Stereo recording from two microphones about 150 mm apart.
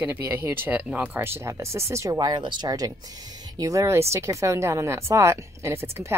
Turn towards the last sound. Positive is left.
turn(degrees=-15)  # may be behind; listen again after turning